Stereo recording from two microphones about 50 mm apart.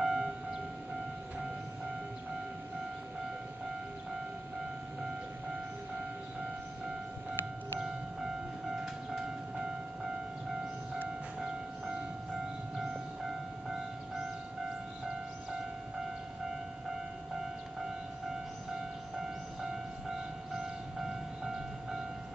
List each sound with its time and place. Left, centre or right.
0.0 s train: centre
7.8 s train: centre
11.3 s music: centre
18.7 s train: centre